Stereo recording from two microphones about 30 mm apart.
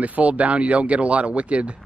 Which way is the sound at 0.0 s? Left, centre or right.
Right.